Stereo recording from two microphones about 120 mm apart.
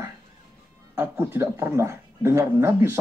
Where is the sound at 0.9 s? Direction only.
20° right (ahead or behind).